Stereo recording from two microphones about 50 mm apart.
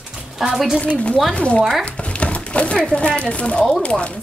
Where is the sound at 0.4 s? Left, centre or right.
Centre.